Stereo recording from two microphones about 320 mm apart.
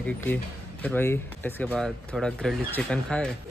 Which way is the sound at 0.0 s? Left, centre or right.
Centre.